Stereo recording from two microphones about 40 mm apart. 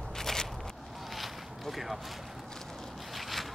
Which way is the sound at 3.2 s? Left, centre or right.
Centre.